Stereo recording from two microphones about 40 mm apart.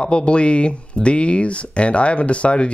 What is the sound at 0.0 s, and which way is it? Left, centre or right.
Speech, left.